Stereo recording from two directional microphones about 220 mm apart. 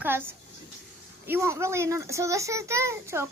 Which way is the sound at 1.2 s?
10° right (ahead or behind).